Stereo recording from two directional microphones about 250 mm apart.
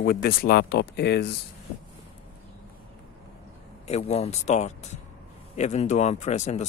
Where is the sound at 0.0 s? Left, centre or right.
Left.